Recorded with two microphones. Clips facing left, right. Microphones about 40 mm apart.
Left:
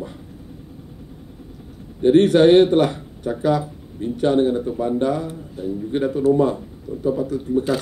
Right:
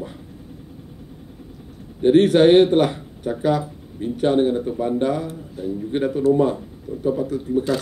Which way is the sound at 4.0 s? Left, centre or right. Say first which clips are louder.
Even; centre.